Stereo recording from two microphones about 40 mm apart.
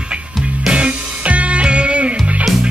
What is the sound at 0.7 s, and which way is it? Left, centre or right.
Music, right.